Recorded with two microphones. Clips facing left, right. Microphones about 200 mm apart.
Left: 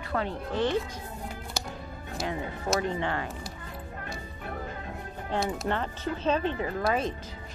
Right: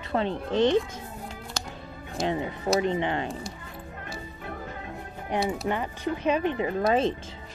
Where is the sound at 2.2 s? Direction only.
25° right (ahead or behind).